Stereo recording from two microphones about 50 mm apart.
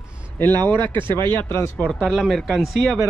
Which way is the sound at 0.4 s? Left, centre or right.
Left.